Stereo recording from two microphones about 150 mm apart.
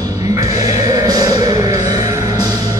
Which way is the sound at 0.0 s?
25° right (ahead or behind).